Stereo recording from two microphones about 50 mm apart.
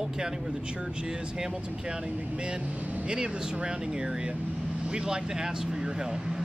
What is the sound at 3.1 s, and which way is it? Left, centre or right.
Speech, centre.